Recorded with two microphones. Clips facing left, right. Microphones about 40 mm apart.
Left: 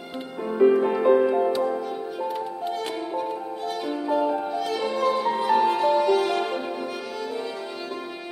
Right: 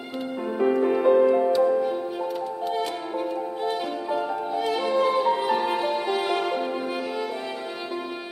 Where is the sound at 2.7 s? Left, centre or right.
Right.